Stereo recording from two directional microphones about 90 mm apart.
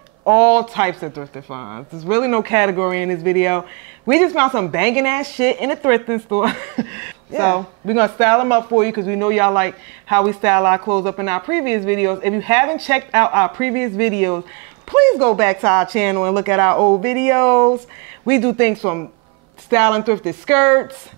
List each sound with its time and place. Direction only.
0.3 s speech: 15° right (ahead or behind)